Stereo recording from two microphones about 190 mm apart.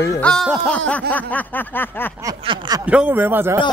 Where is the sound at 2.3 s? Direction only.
20° right (ahead or behind).